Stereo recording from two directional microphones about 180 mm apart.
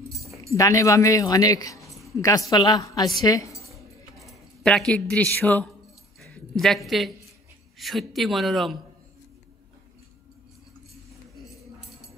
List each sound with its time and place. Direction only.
0.1 s keys jangling: 15° right (ahead or behind)
0.6 s speech: 20° left (ahead or behind)
1.8 s a sound: centre (ahead or behind)
2.5 s a woman's voice: 20° left (ahead or behind)
4.2 s speech: centre (ahead or behind)
11.3 s a sound: centre (ahead or behind)